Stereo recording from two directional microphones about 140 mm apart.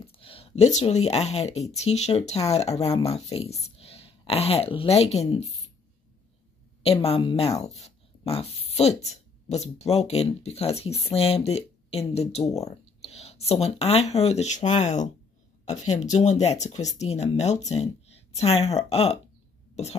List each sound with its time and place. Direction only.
0.0 s speech: 40° left (ahead or behind)
6.8 s speech: 45° left (ahead or behind)